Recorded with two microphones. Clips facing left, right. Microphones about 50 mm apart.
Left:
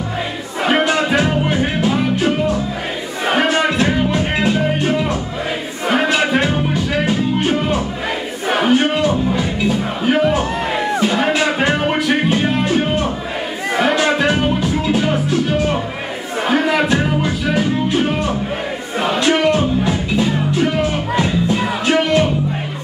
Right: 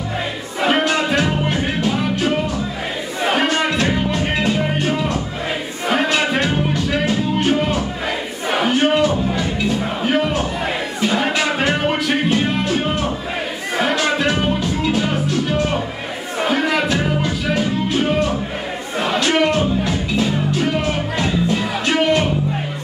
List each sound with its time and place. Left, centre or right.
0.7 s music: centre
8.5 s battle cry: centre
9.0 s music: centre
12.6 s music: centre
16.4 s a sound: centre
16.9 s music: centre
19.1 s music: centre